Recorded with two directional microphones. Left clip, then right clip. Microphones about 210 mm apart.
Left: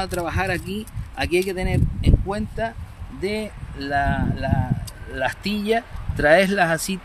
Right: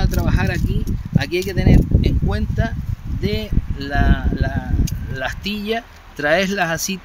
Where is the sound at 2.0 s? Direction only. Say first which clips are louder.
Right 2 dB; 5° left (ahead or behind).